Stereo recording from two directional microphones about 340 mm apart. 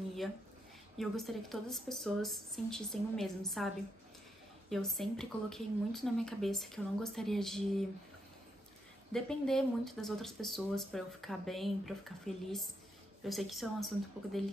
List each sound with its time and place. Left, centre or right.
0.9 s speech: centre
9.1 s speech: centre
13.2 s speech: centre